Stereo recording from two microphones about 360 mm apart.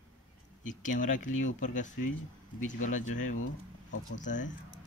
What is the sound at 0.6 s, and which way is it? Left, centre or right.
Speech, left.